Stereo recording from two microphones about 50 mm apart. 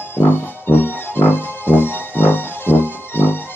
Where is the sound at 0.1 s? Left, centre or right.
Left.